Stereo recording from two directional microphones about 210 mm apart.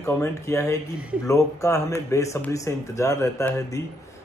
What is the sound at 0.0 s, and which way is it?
Speech, 15° left (ahead or behind).